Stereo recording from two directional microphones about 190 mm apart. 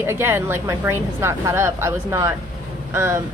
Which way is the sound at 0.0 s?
15° right (ahead or behind).